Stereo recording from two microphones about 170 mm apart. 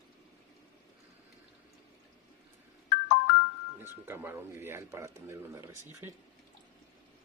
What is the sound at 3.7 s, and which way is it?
Speech, 15° right (ahead or behind).